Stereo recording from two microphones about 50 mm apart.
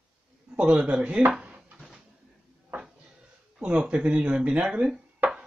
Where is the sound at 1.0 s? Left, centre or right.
Centre.